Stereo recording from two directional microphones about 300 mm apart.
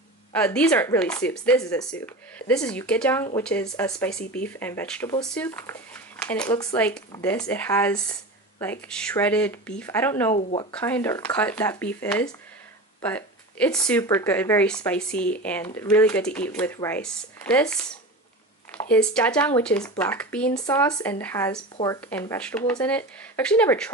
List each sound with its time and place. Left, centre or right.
0.3 s speech: centre
10.7 s speech: centre
18.9 s speech: centre